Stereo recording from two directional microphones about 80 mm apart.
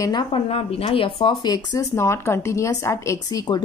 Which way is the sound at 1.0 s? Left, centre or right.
Left.